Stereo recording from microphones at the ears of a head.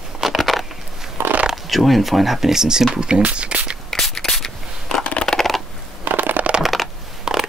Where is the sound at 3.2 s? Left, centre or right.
Right.